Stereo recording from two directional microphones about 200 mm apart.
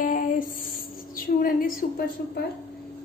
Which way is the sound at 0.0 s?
40° left (ahead or behind).